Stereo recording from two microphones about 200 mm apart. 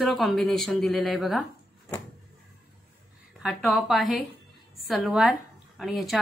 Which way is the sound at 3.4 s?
Centre (ahead or behind).